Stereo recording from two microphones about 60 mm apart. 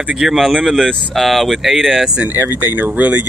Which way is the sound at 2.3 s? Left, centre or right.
Right.